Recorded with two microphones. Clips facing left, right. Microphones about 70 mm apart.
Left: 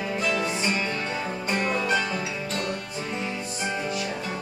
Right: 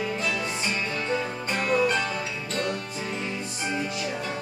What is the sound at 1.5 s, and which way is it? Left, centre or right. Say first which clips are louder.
Music: right 2 dB; centre.